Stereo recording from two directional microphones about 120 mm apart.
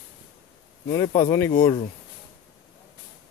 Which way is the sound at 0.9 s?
25° left (ahead or behind).